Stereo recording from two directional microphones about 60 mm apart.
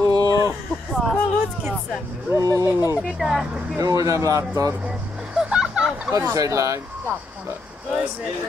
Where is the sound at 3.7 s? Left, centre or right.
Right.